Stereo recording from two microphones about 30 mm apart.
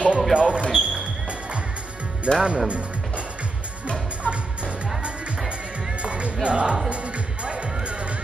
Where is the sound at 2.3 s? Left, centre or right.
Right.